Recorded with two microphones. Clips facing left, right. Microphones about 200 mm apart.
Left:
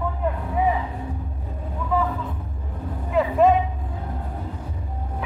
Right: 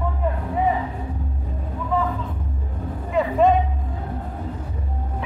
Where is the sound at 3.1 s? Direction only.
5° left (ahead or behind).